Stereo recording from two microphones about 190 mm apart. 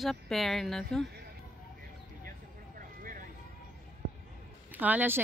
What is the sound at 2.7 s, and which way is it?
Vehicle, 45° right (ahead or behind).